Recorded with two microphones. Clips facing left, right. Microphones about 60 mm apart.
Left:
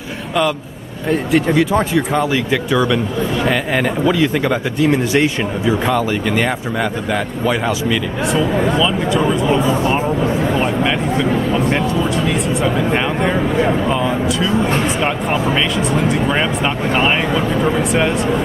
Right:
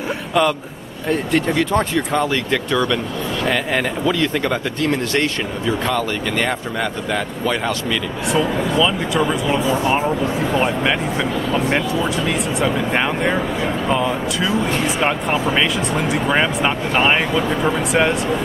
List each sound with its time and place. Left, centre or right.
0.3 s a man's voice: centre
12.3 s speech: centre